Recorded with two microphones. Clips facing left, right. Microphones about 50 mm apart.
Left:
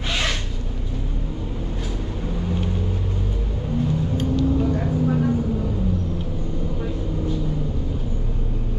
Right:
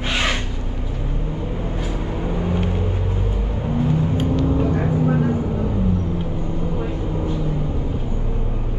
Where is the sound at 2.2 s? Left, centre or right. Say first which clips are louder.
Right 4 dB; right.